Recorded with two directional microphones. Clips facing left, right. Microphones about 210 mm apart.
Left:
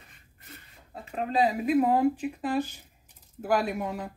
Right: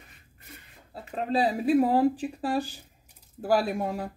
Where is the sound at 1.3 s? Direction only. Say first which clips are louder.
Right 1 dB; 35° right (ahead or behind).